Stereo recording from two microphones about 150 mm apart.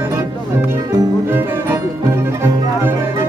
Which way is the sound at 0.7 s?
15° right (ahead or behind).